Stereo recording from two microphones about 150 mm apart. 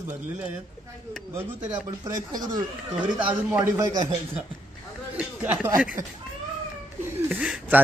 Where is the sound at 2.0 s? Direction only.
25° right (ahead or behind).